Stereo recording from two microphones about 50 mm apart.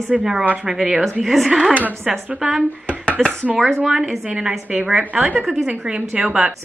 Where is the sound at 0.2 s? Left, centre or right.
Centre.